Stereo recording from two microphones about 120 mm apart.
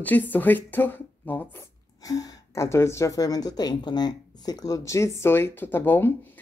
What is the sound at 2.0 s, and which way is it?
A woman's voice, 30° left (ahead or behind).